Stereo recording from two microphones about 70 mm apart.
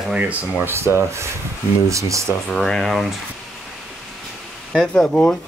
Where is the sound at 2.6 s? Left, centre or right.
Centre.